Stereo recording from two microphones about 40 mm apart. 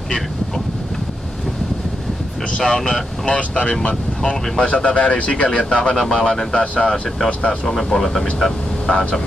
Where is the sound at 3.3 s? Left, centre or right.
Left.